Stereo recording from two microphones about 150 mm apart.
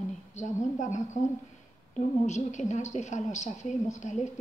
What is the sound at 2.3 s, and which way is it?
A woman's voice, 50° left (ahead or behind).